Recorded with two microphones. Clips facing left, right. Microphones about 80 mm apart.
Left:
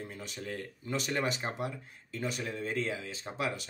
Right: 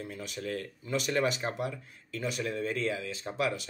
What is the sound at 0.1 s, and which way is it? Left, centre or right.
Speech, left.